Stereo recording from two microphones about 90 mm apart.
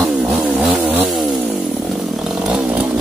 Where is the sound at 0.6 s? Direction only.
20° right (ahead or behind).